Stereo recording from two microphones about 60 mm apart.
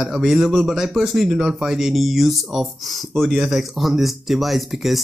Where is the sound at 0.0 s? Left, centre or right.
Centre.